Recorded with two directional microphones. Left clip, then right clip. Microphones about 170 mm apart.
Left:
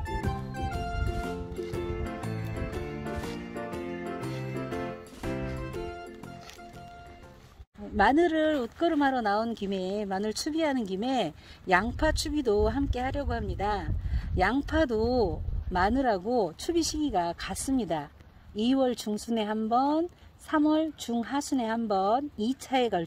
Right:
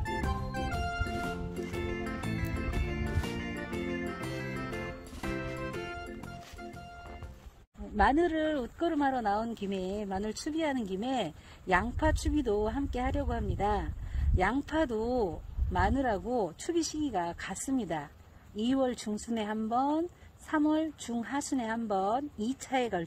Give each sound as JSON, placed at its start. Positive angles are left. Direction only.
{"t": 0.0, "sound": "music", "side_deg": 0}
{"t": 8.0, "sound": "speech", "side_deg": 40}